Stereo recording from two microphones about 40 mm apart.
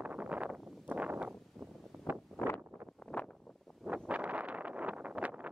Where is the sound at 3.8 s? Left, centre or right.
Right.